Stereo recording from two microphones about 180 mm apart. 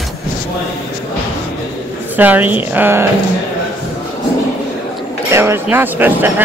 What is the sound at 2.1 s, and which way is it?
Speech, 10° right (ahead or behind).